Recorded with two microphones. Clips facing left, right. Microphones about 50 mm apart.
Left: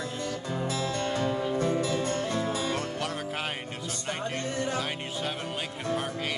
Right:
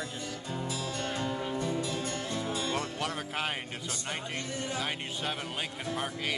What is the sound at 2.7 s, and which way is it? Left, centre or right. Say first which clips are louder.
Music: left 2 dB; centre.